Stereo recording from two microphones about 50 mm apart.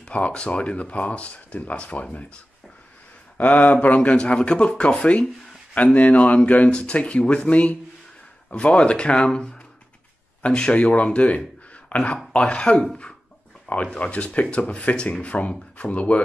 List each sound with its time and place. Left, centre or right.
0.0 s speech: left
3.3 s speech: left
13.8 s speech: left